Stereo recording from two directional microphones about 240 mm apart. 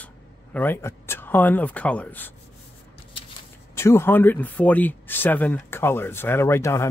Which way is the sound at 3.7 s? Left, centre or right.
Centre.